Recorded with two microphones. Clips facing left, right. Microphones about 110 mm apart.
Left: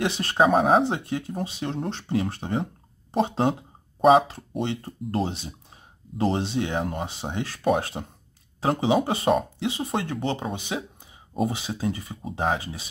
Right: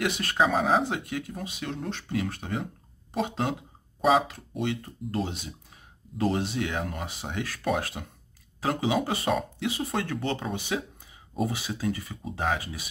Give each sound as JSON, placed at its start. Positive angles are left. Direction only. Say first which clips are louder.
{"t": 0.0, "sound": "speech", "louder": "left 4 dB", "side_deg": 30}